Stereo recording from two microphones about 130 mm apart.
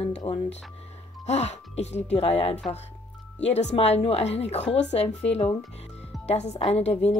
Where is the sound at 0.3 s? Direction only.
60° left (ahead or behind).